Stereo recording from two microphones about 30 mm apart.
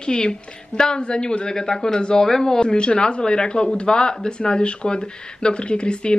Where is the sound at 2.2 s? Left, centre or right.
Centre.